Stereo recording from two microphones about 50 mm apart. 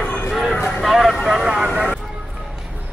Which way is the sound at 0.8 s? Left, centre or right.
Centre.